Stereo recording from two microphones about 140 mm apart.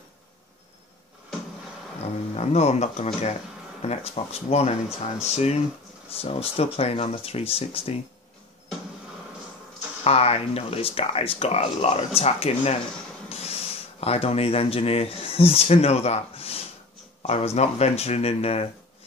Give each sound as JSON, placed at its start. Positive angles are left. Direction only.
{"t": 2.3, "sound": "speech", "side_deg": 50}
{"t": 10.0, "sound": "speech", "side_deg": 45}